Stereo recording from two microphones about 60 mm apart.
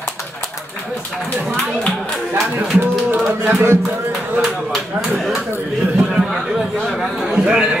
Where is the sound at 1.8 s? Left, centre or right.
Centre.